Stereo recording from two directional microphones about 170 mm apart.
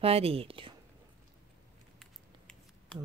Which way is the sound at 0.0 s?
35° right (ahead or behind).